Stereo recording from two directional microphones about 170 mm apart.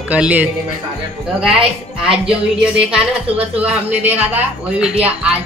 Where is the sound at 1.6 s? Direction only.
5° right (ahead or behind).